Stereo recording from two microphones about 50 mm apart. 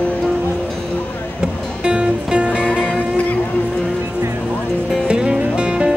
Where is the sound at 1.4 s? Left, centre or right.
Centre.